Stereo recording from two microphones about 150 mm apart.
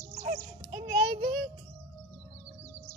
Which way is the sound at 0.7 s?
30° right (ahead or behind).